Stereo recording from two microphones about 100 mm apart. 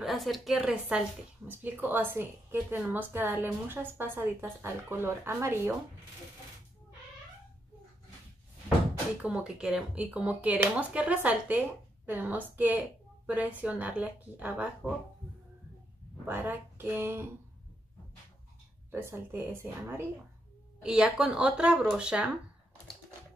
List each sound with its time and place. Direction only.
0.0 s a woman's voice: centre (ahead or behind)
1.5 s a woman's voice: 20° right (ahead or behind)
9.2 s speech: 10° right (ahead or behind)
16.3 s a woman's voice: 20° right (ahead or behind)
18.9 s a woman's voice: 25° right (ahead or behind)
20.8 s speech: 5° right (ahead or behind)